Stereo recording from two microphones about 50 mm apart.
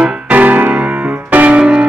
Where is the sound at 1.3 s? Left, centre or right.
Right.